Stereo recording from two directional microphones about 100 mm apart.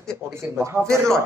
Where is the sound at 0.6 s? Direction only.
30° right (ahead or behind).